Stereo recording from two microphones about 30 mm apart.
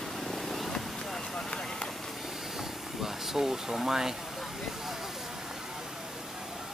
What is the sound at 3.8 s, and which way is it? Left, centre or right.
Speech, centre.